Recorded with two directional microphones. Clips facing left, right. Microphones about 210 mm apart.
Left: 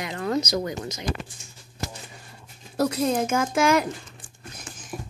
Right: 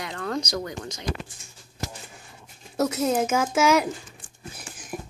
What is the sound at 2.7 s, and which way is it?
Speech, 5° right (ahead or behind).